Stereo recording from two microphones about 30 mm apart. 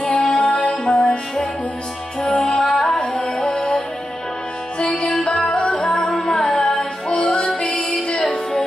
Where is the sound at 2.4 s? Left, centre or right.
Left.